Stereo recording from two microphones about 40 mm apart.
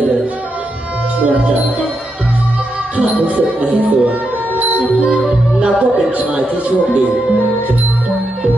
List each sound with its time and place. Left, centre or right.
3.3 s music: right
5.6 s music: right